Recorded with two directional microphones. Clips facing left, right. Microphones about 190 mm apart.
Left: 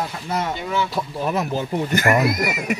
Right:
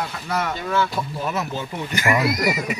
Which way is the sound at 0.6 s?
15° left (ahead or behind).